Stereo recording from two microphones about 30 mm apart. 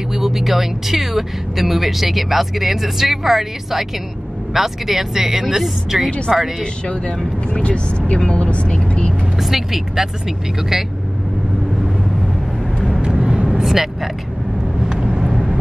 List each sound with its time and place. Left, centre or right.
0.1 s speech: centre
7.5 s speech: left
9.4 s speech: centre
13.0 s vehicle: right
15.0 s vehicle: centre